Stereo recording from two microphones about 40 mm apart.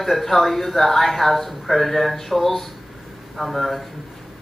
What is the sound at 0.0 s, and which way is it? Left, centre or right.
Speech, centre.